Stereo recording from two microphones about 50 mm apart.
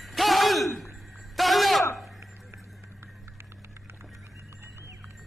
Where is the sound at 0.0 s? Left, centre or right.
Centre.